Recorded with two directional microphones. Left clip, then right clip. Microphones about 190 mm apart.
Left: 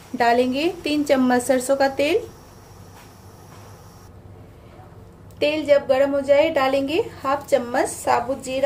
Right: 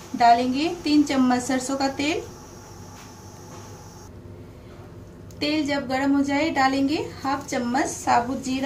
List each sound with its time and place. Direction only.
0.2 s a woman's voice: 55° left (ahead or behind)
5.4 s a woman's voice: 50° left (ahead or behind)